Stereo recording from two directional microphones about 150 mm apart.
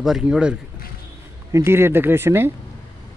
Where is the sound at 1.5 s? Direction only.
15° right (ahead or behind).